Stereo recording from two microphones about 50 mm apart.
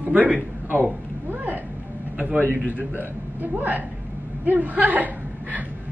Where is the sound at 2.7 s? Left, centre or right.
Right.